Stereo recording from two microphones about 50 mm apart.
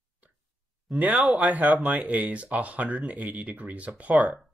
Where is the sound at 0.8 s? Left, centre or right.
Right.